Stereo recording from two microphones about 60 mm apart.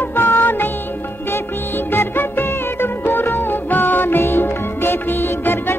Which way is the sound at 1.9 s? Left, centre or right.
Left.